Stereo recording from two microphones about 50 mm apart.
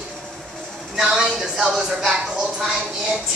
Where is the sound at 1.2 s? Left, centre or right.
Centre.